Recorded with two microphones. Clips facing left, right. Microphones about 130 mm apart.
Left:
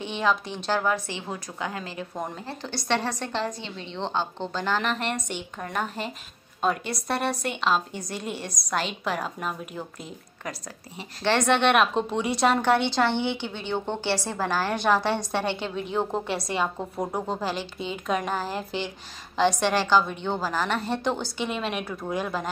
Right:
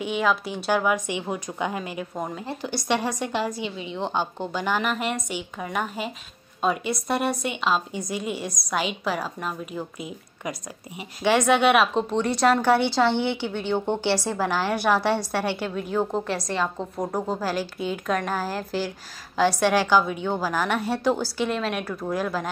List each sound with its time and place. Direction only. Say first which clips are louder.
0.0 s a woman's voice: right 2 dB; 5° right (ahead or behind)
11.2 s a woman's voice: right 3 dB; 10° right (ahead or behind)